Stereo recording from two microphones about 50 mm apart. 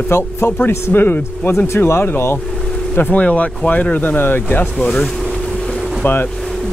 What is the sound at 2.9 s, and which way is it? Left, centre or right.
Speech, left.